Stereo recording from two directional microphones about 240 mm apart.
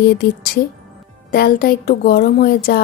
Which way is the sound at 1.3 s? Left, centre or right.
Left.